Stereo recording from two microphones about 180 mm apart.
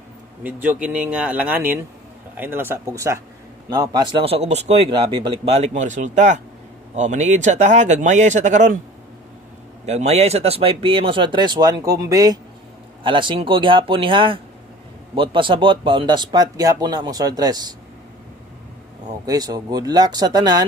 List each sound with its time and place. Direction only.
0.4 s speech: 10° right (ahead or behind); by 8.7 s 40° right (ahead or behind)
9.8 s speech: 40° right (ahead or behind); by 17.7 s 20° right (ahead or behind)
19.2 s speech: 20° right (ahead or behind)